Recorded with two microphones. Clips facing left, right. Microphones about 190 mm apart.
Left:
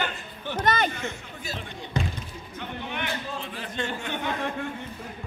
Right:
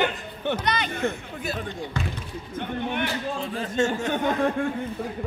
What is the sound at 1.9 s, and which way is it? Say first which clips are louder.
Speech: left 3 dB; 20° left (ahead or behind).